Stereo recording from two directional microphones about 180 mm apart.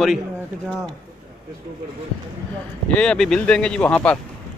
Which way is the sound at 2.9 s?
5° left (ahead or behind).